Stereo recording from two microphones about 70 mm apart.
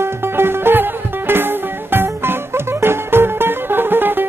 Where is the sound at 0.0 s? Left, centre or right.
Right.